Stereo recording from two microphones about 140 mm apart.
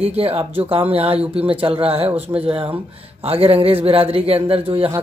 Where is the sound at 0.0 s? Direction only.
45° right (ahead or behind).